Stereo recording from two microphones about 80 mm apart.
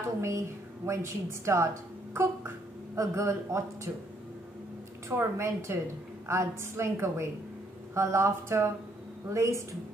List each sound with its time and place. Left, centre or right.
0.2 s a woman's voice: right
3.0 s a woman's voice: right
5.1 s a woman's voice: right